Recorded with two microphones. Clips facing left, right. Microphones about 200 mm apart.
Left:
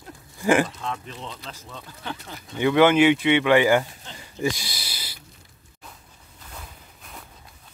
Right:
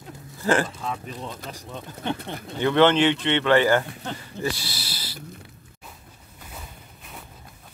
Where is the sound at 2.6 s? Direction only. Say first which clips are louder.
Left 1 dB; 10° left (ahead or behind).